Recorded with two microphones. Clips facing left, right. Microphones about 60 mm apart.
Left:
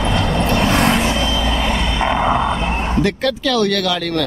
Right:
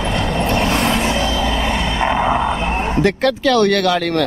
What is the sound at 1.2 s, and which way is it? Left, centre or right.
Vehicle, right.